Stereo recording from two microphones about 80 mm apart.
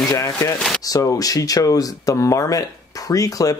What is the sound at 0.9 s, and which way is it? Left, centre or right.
Speech, left.